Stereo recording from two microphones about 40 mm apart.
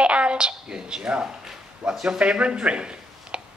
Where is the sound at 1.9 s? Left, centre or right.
Right.